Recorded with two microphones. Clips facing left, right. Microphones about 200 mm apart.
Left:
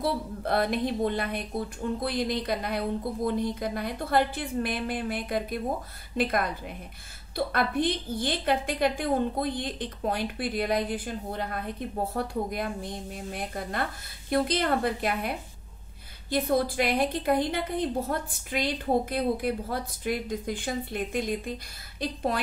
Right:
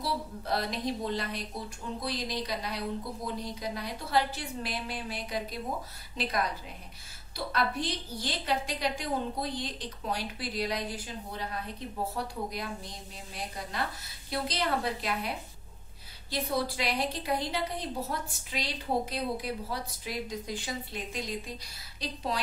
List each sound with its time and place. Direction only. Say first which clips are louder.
0.0 s a woman's voice: left 5 dB; 55° left (ahead or behind)